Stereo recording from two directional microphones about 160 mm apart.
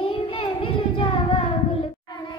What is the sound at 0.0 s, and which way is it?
Child singing, 35° left (ahead or behind).